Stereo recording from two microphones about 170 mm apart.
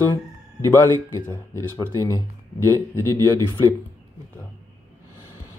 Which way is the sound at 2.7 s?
15° left (ahead or behind).